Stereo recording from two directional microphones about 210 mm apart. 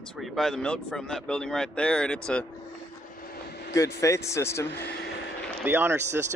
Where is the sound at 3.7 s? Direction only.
15° left (ahead or behind).